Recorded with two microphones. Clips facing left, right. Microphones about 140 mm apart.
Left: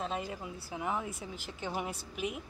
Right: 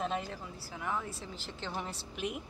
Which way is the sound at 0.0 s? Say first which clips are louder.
Right 1 dB; centre (ahead or behind).